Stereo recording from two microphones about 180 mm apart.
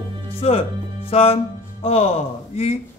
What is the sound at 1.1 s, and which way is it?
Music, 30° left (ahead or behind).